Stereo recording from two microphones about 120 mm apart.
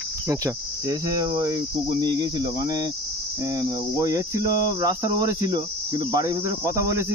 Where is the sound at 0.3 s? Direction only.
25° right (ahead or behind).